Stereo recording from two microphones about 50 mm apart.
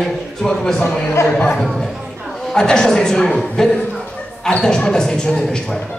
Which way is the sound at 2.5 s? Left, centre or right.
Centre.